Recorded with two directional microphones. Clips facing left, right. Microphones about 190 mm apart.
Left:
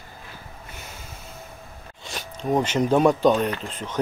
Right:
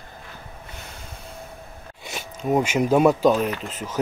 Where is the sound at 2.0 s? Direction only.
10° right (ahead or behind).